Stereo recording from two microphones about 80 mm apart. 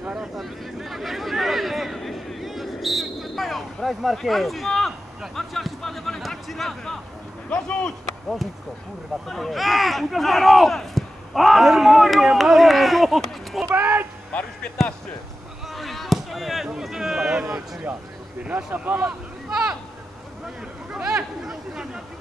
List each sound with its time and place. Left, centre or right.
0.2 s a sound: centre
7.4 s speech: centre
9.3 s speech: centre
13.7 s speech: right
14.3 s speech: centre
15.7 s speech: centre; by 19.1 s right
19.5 s a sound: centre
20.9 s speech: centre